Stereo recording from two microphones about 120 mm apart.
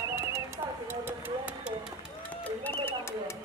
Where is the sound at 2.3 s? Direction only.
15° left (ahead or behind).